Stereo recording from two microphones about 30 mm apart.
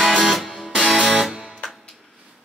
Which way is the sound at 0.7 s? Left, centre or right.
Centre.